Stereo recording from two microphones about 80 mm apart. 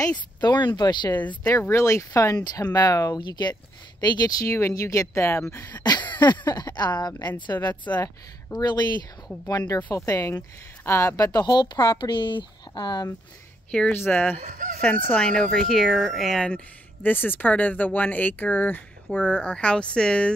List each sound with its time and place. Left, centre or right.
0.4 s speech: left
1.7 s speech: left
2.3 s speech: left
3.2 s speech: left
4.0 s speech: left
5.7 s speech: left
7.9 s speech: left
8.5 s speech: left
9.9 s speech: left
13.7 s speech: centre
13.9 s speech: left
17.0 s speech: left